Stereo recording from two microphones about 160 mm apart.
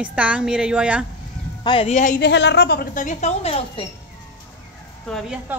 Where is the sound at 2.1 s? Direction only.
90° left; by 3.8 s 35° left (ahead or behind).